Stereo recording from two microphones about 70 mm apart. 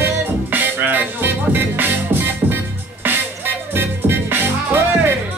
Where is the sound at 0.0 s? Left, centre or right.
Right.